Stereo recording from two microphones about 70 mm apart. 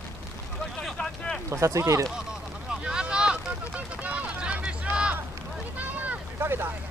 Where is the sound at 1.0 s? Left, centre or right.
Centre.